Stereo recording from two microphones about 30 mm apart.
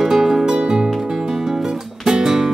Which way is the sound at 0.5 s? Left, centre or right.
Right.